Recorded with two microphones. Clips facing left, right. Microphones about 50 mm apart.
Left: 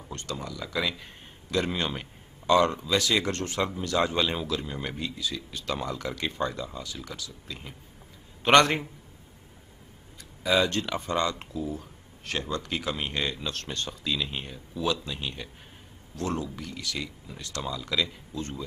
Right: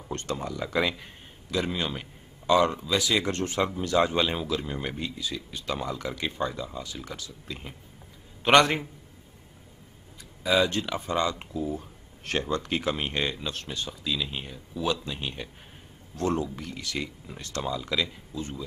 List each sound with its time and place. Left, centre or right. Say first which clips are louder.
0.1 s speech: right 4 dB; right
0.9 s a man's voice: even; centre
2.4 s speech: even; centre
3.3 s speech: right 2 dB; right
7.2 s speech: right 1 dB; right
8.4 s a man's voice: even; centre
10.7 s speech: even; centre
11.5 s speech: right 2 dB; right
13.7 s speech: left 1 dB; centre
14.8 s speech: even; centre
17.6 s speech: right 1 dB; centre